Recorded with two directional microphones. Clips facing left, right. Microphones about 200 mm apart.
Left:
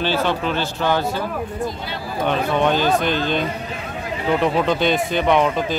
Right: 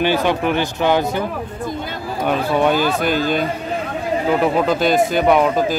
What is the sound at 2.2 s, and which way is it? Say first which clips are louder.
Speech: right 2 dB; 10° right (ahead or behind).